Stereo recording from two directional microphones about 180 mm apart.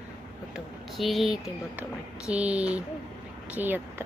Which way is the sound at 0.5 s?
Centre (ahead or behind).